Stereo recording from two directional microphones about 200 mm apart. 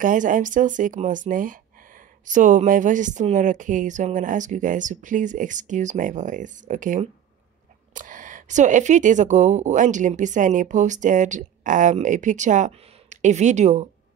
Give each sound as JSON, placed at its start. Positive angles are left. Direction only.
{"t": 0.0, "sound": "speech", "side_deg": -40}